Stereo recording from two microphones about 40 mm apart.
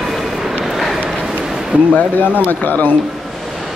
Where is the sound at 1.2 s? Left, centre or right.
Centre.